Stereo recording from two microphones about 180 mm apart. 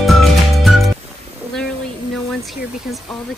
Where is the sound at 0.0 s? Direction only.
Centre (ahead or behind).